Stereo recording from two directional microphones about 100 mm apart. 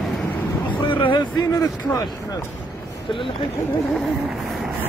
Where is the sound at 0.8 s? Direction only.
55° left (ahead or behind).